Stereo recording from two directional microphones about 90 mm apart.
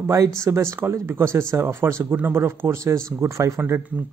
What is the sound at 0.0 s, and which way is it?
Speech, 35° right (ahead or behind).